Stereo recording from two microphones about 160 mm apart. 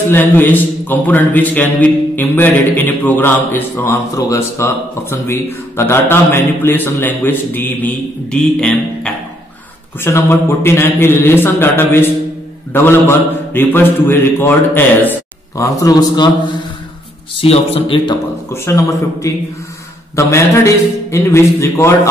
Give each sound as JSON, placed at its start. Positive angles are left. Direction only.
{"t": 0.1, "sound": "speech", "side_deg": 10}
{"t": 17.4, "sound": "a man's voice", "side_deg": 35}
{"t": 18.5, "sound": "a man's voice", "side_deg": 20}